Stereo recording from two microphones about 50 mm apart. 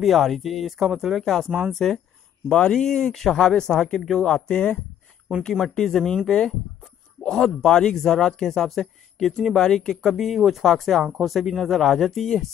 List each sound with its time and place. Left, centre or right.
0.0 s speech: centre
2.5 s speech: left
2.8 s speech: centre
5.8 s speech: centre